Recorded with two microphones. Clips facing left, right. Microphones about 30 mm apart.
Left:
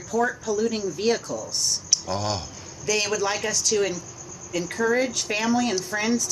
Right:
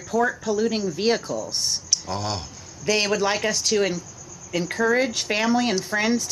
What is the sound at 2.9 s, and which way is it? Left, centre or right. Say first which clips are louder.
Speech: right 3 dB; right.